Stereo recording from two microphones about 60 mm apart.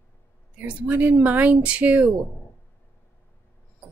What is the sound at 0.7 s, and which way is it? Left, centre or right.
Speech, right.